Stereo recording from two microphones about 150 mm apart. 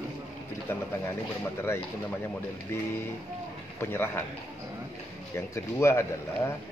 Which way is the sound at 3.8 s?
15° left (ahead or behind).